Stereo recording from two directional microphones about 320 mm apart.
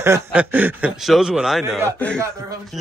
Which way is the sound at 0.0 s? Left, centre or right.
Centre.